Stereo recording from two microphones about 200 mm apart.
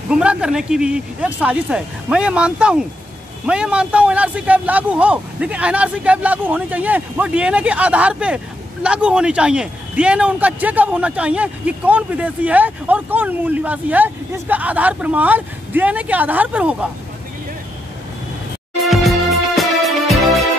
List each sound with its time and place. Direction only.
0.1 s a man's voice: 5° right (ahead or behind)
18.8 s music: centre (ahead or behind)